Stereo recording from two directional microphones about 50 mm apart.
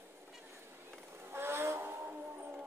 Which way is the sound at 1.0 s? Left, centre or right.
Right.